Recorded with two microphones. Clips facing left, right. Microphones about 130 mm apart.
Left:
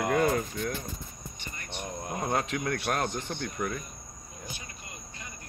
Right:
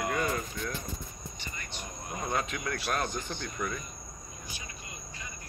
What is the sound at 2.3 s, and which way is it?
Speech, 60° left (ahead or behind).